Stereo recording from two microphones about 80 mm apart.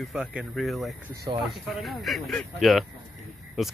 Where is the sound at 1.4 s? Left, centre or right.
Centre.